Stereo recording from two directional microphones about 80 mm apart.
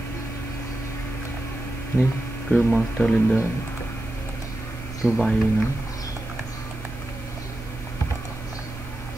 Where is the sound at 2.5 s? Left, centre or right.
Centre.